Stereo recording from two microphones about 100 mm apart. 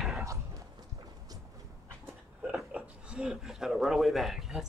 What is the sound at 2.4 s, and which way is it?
Speech, 10° right (ahead or behind).